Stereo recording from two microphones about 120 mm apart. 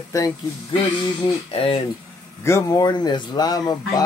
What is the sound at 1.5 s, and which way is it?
Speech, 55° left (ahead or behind).